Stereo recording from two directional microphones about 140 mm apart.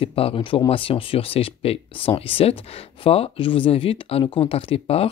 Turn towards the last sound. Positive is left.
turn(degrees=45)  # may be behind; listen again after turning